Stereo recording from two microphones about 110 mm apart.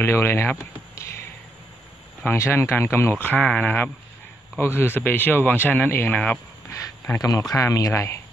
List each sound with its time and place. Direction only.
0.0 s speech: 20° left (ahead or behind)
2.2 s speech: 25° left (ahead or behind)
7.1 s speech: 30° left (ahead or behind)